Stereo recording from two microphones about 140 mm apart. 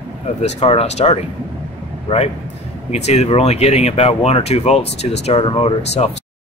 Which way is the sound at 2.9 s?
50° left (ahead or behind).